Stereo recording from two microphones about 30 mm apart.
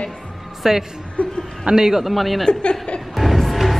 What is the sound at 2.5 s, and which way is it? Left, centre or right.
Speech, left.